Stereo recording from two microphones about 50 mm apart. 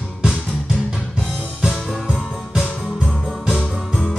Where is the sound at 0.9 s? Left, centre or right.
Centre.